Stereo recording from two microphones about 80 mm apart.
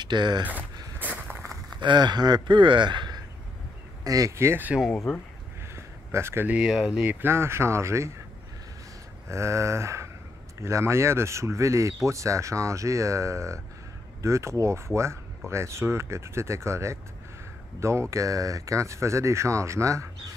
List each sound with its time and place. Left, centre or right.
0.0 s speech: right
0.4 s speech: right
0.9 s a sound: centre
1.8 s a man's voice: right
4.0 s speech: right
4.4 s speech: right
6.1 s speech: right
6.4 s speech: centre
7.2 s speech: right
9.3 s speech: right